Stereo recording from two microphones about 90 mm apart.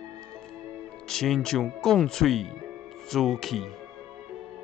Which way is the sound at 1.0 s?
5° left (ahead or behind).